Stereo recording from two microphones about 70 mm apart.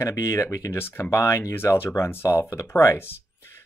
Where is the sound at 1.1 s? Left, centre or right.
Left.